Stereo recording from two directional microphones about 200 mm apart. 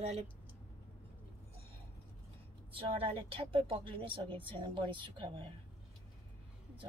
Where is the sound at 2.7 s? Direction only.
25° right (ahead or behind).